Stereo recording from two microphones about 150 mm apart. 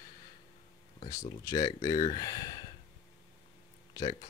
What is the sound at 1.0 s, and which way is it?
Speech, 25° left (ahead or behind).